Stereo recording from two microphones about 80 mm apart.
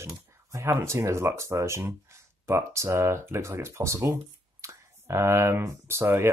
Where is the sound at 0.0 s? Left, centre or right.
Right.